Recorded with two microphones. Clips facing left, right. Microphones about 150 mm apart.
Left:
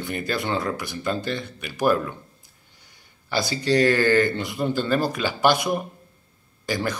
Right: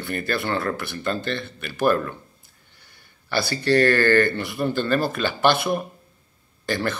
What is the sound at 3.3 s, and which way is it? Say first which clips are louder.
Speech: right 1 dB; 15° left (ahead or behind).